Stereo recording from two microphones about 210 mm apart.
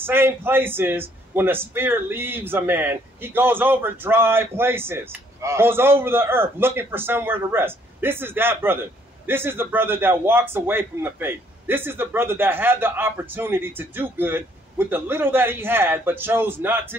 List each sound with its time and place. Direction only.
0.0 s a man's voice: 10° right (ahead or behind)